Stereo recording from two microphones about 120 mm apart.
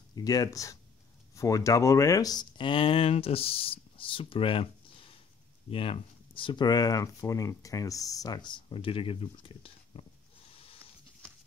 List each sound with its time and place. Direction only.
0.1 s speech: 30° left (ahead or behind); by 10.8 s 50° left (ahead or behind)